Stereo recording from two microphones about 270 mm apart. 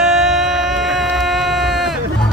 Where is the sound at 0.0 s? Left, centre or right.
Centre.